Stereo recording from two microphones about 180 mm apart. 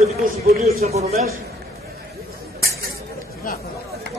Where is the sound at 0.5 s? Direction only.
55° right (ahead or behind).